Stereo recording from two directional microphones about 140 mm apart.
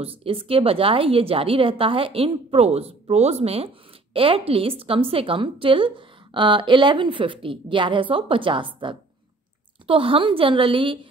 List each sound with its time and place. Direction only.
0.0 s a woman's voice: 45° right (ahead or behind)